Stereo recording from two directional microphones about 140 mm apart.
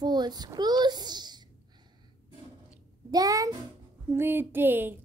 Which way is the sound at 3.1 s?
25° right (ahead or behind).